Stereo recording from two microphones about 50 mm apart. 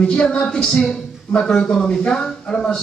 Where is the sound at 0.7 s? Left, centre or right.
Centre.